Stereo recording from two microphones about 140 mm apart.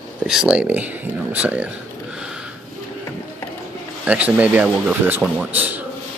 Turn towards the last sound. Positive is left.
turn(degrees=-10)  # may be behind; listen again after turning